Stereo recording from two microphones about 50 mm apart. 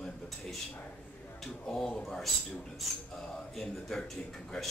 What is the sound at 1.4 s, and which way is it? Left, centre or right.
Speech, centre.